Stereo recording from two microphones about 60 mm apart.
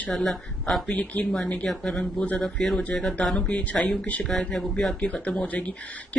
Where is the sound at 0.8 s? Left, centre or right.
Left.